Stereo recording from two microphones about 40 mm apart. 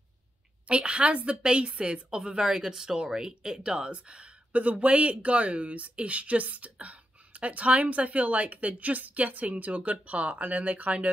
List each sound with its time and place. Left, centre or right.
0.7 s a woman's voice: right